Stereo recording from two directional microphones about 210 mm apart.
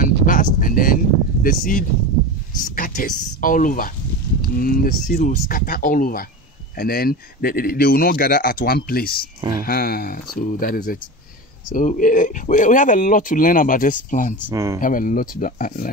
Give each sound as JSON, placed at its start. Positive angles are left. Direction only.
{"t": 0.0, "sound": "a sound", "side_deg": 40}
{"t": 1.4, "sound": "speech", "side_deg": 40}
{"t": 14.5, "sound": "speech", "side_deg": -15}
{"t": 14.8, "sound": "speech", "side_deg": 40}